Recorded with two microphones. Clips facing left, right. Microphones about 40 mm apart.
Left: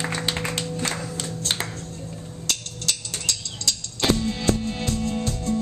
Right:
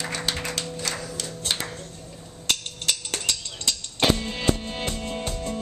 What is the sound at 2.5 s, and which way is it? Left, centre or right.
Music, right.